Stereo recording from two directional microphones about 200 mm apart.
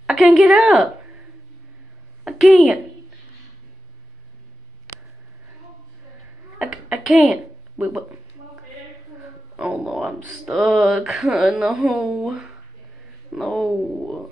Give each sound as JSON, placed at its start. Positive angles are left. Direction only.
{"t": 0.0, "sound": "a woman's voice", "side_deg": 0}
{"t": 2.2, "sound": "a woman's voice", "side_deg": 0}
{"t": 6.6, "sound": "a sound", "side_deg": -5}
{"t": 9.6, "sound": "speech", "side_deg": -5}